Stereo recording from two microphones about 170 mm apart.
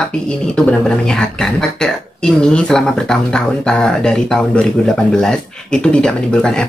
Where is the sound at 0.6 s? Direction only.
5° left (ahead or behind).